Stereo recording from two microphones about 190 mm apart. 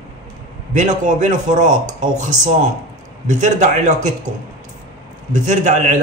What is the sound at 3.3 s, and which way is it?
Speech, 40° right (ahead or behind).